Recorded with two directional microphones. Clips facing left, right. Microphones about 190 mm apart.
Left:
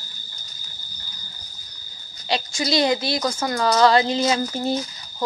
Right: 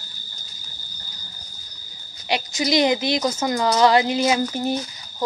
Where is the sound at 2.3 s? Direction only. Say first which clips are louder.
Right 2 dB; 15° right (ahead or behind).